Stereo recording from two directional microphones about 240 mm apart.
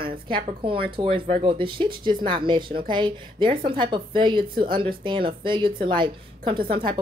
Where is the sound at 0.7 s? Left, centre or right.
Right.